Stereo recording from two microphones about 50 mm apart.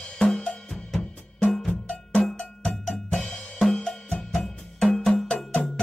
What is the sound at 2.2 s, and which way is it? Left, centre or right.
Percussion, centre.